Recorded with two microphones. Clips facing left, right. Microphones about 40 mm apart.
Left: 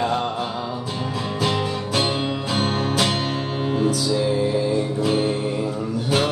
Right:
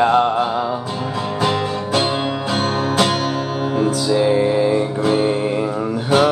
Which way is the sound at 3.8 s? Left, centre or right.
Right.